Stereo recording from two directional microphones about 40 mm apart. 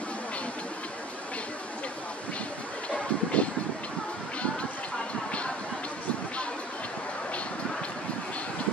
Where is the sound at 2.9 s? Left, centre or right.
Left.